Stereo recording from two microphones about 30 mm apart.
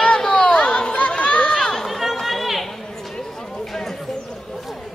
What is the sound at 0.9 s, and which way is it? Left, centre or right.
Chatter, left.